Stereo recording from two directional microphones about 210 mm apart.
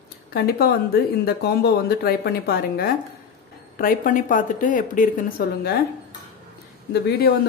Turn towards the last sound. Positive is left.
turn(degrees=50)  # may be behind; listen again after turning